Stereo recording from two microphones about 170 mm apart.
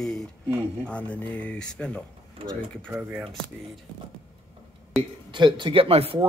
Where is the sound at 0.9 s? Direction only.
10° left (ahead or behind).